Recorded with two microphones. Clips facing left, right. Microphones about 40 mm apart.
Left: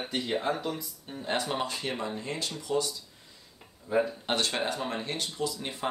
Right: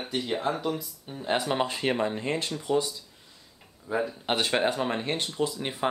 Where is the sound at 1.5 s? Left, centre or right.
Right.